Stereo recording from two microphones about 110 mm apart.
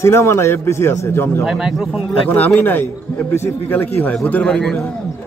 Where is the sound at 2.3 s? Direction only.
20° left (ahead or behind).